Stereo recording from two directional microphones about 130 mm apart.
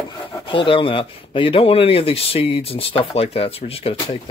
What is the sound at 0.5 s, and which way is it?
Speech, 40° left (ahead or behind).